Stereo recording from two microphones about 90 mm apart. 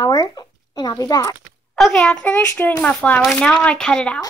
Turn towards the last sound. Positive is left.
turn(degrees=10)  # may be behind; listen again after turning